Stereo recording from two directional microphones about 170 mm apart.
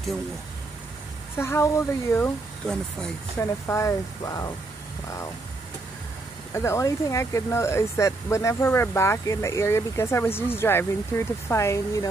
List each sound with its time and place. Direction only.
1.4 s speech: 15° left (ahead or behind)
3.3 s speech: 15° left (ahead or behind)
6.5 s speech: 15° left (ahead or behind)